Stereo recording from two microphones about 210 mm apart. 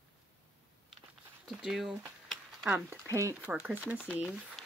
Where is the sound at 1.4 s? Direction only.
Centre (ahead or behind).